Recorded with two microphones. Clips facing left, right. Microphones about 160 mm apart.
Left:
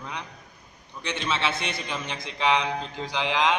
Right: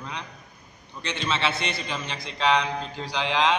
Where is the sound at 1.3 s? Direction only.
15° left (ahead or behind).